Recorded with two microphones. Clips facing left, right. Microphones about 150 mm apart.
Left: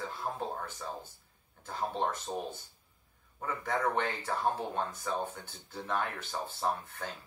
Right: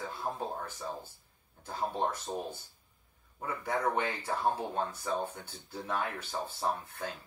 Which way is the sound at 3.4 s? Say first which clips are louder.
Even; 10° right (ahead or behind).